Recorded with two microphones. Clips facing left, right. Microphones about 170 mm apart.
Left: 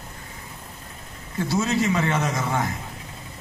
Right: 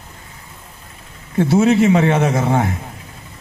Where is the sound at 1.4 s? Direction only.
60° right (ahead or behind).